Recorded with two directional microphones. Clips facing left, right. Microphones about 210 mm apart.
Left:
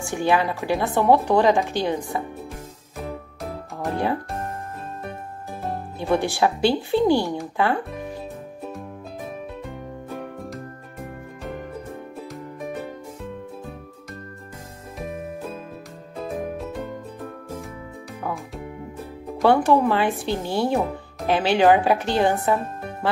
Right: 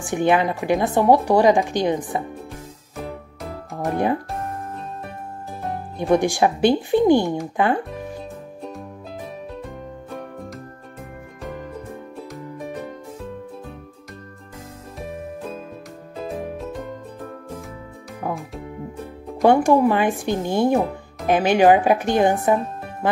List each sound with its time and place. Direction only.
0.0 s a woman's voice: 20° right (ahead or behind)
3.7 s music: 15° right (ahead or behind)
5.9 s a woman's voice: 15° right (ahead or behind)
9.7 s music: centre (ahead or behind)
19.4 s a woman's voice: 15° right (ahead or behind)